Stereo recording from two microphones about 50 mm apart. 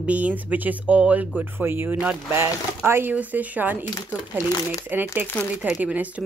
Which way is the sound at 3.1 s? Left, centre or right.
Right.